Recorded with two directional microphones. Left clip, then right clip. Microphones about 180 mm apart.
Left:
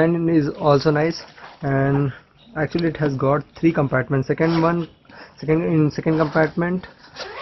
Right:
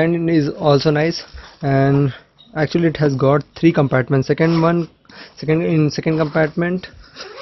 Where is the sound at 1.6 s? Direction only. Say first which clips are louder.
Right 4 dB; 45° right (ahead or behind).